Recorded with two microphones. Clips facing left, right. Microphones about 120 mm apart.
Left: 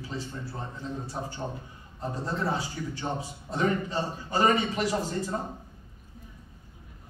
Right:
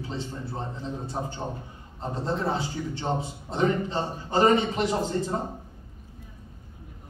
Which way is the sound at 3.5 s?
25° right (ahead or behind).